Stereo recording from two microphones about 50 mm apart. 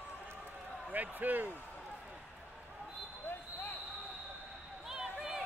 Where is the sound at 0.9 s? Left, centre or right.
Right.